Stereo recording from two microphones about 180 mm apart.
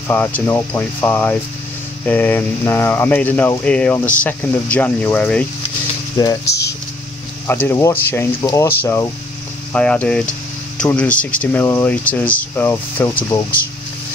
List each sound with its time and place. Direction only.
0.1 s speech: 10° left (ahead or behind)
6.4 s speech: 65° left (ahead or behind)
7.4 s speech: 15° left (ahead or behind)